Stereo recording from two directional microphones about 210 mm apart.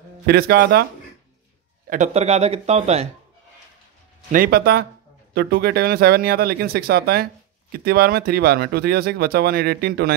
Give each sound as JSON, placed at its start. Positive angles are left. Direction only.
{"t": 0.3, "sound": "speech", "side_deg": -50}
{"t": 1.9, "sound": "speech", "side_deg": -35}
{"t": 4.3, "sound": "speech", "side_deg": -45}